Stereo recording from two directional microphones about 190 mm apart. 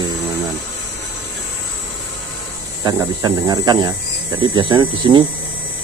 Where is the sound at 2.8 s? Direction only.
20° right (ahead or behind).